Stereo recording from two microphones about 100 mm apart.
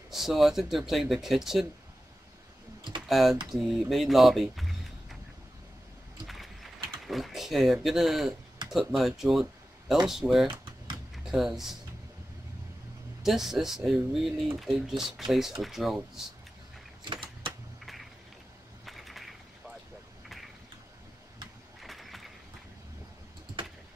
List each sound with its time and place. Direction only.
0.1 s speech: centre (ahead or behind)
3.1 s speech: centre (ahead or behind)
6.2 s speech: centre (ahead or behind)
10.5 s typing: 55° right (ahead or behind)
11.2 s speech: 5° right (ahead or behind)
13.2 s speech: 5° right (ahead or behind)
17.0 s vehicle: 50° right (ahead or behind)
18.9 s a sound: centre (ahead or behind)
21.8 s a sound: centre (ahead or behind)